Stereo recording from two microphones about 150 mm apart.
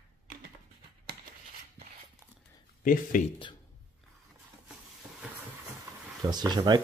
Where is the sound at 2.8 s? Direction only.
65° left (ahead or behind).